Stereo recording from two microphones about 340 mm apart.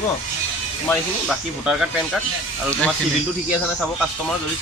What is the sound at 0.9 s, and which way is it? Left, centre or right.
Speech, centre.